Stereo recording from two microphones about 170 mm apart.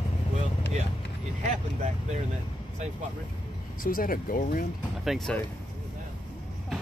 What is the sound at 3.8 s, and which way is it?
Speech, 55° left (ahead or behind).